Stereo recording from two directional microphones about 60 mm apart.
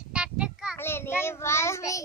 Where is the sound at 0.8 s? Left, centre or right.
Left.